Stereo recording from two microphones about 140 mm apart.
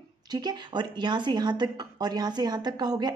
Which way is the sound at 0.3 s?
30° right (ahead or behind).